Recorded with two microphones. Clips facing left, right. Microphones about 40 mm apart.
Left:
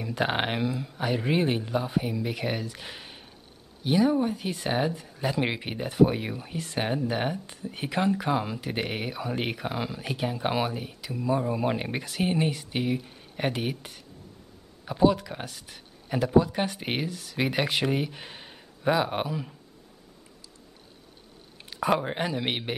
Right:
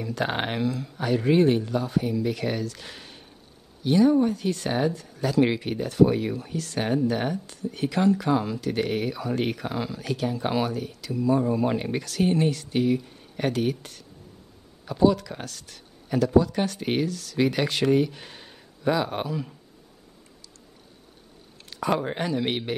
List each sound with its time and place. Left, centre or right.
0.0 s speech: centre
21.6 s speech: centre